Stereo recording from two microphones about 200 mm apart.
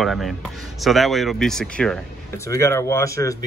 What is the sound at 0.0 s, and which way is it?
Speech, centre (ahead or behind).